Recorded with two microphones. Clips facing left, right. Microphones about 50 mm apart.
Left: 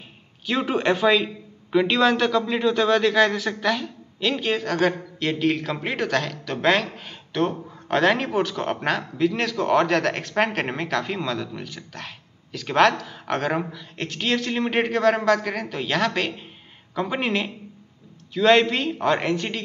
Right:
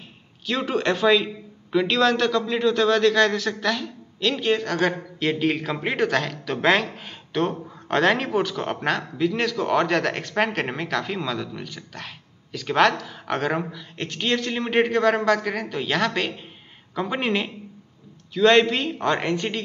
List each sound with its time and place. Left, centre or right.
0.5 s a man's voice: centre